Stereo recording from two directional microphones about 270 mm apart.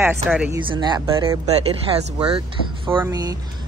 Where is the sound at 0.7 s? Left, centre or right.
Centre.